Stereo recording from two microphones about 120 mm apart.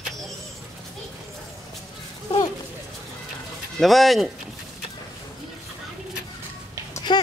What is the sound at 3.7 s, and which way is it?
Speech, centre (ahead or behind).